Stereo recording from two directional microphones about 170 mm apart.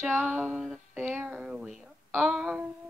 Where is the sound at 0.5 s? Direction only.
Centre (ahead or behind).